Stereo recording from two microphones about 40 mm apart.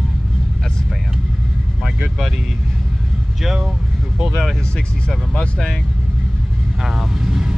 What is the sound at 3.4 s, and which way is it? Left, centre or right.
Speech, centre.